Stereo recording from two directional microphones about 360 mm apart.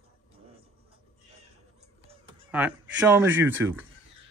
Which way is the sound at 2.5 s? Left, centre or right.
Centre.